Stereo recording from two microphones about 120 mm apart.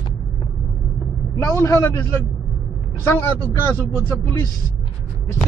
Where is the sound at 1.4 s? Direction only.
25° left (ahead or behind).